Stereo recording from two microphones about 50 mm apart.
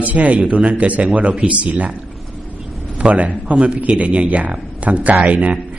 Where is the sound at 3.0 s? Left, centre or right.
Right.